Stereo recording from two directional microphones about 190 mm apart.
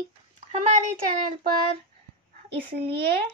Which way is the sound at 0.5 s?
35° right (ahead or behind).